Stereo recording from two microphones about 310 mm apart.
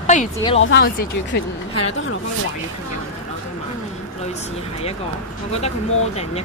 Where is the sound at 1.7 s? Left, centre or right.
Left.